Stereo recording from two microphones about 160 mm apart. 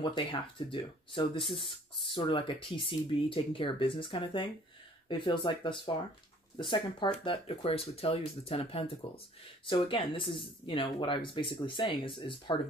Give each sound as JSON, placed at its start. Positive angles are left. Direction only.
{"t": 0.0, "sound": "speech", "side_deg": 30}